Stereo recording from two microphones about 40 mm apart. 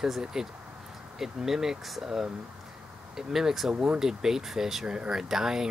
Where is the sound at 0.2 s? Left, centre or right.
Centre.